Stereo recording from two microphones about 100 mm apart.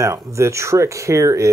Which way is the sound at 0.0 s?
30° right (ahead or behind).